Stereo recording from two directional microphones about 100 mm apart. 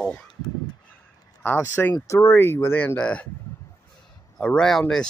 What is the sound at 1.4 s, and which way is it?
Speech, 20° left (ahead or behind).